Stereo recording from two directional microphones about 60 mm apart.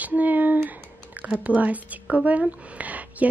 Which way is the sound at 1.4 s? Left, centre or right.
Right.